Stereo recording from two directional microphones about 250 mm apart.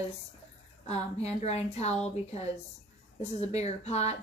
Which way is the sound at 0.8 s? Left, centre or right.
Left.